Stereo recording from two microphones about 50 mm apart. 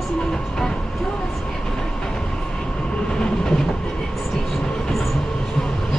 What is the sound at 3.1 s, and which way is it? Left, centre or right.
Train, centre.